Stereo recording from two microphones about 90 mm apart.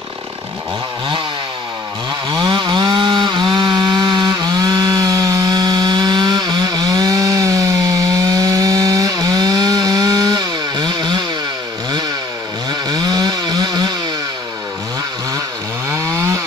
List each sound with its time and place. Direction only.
2.2 s chainsaw: 55° right (ahead or behind)
12.8 s chainsaw: 50° right (ahead or behind)
16.0 s chainsaw: 30° right (ahead or behind)